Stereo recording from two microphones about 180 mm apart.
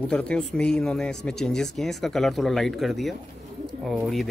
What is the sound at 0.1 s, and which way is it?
Speech, 5° left (ahead or behind).